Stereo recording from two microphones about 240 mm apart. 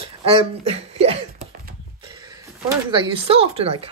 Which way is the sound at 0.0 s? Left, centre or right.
Right.